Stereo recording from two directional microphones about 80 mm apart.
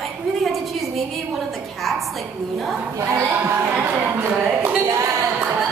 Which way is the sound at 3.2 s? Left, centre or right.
Right.